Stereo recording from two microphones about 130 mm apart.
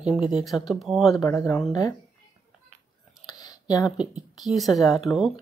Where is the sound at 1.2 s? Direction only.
20° left (ahead or behind).